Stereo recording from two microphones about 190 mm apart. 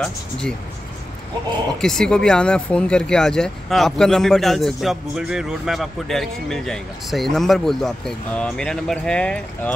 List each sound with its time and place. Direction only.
0.0 s speech: 5° left (ahead or behind)
1.8 s speech: 5° left (ahead or behind)